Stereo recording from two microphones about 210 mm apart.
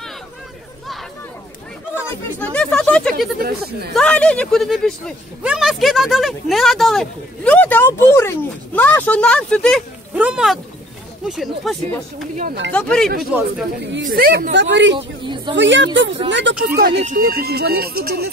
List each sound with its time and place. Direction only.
2.0 s a sound: 10° left (ahead or behind)
3.3 s speech: 45° right (ahead or behind)
3.9 s speech: 5° left (ahead or behind)
12.7 s speech: 5° left (ahead or behind)
13.9 s speech: 55° right (ahead or behind)
15.0 s speech: 25° right (ahead or behind)
15.5 s speech: 60° right (ahead or behind)
16.6 s speech: 45° right (ahead or behind)